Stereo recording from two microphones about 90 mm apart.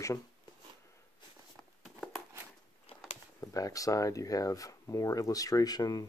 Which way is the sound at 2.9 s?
90° left.